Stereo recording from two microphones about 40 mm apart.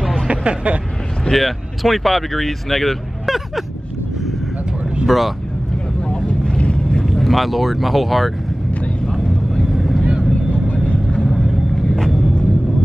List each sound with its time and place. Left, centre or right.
0.3 s speech: right
1.3 s speech: centre
5.0 s speech: centre
6.0 s vehicle: left
7.1 s speech: centre
9.0 s vehicle: centre
10.0 s vehicle: right
10.8 s vehicle: left
11.2 s vehicle: centre